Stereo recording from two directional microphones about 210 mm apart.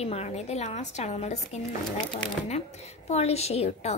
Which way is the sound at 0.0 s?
30° left (ahead or behind).